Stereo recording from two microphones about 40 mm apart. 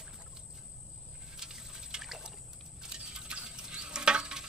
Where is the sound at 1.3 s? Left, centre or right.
Centre.